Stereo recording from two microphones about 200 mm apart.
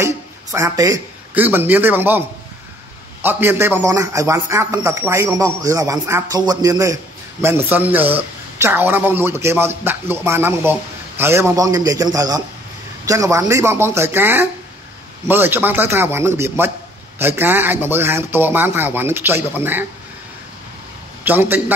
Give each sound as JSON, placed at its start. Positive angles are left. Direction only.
{"t": 0.0, "sound": "a man's voice", "side_deg": -15}
{"t": 21.2, "sound": "a man's voice", "side_deg": -10}